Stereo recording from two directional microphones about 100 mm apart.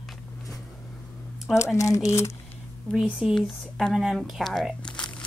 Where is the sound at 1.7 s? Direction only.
30° left (ahead or behind).